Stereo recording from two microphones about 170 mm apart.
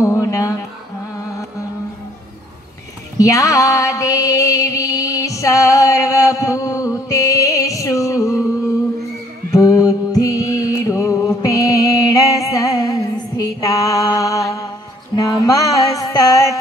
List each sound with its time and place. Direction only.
0.0 s music: 15° left (ahead or behind)
3.2 s a sound: 20° left (ahead or behind)
9.5 s mantra: 20° left (ahead or behind)
10.9 s music: 20° left (ahead or behind)
15.1 s mantra: 20° left (ahead or behind)